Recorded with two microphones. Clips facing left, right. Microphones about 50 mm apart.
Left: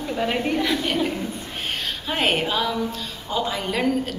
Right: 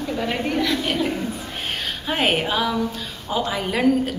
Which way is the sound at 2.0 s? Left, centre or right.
Centre.